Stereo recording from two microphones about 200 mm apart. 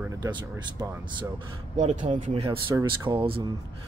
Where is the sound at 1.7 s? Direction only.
35° right (ahead or behind).